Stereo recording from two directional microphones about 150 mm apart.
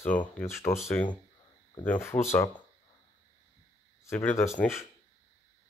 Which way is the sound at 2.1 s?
35° left (ahead or behind).